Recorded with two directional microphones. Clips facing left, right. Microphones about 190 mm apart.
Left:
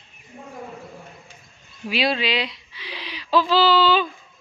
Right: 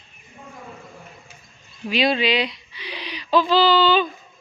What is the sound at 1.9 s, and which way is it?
Speech, 5° left (ahead or behind).